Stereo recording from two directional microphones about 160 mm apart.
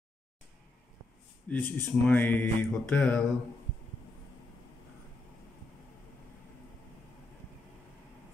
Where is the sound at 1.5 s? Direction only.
10° left (ahead or behind).